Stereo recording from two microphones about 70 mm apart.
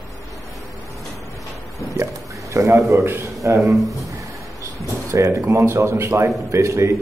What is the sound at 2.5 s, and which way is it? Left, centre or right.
A man's voice, right.